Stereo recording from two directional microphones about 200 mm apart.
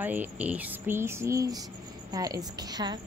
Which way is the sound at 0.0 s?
10° right (ahead or behind).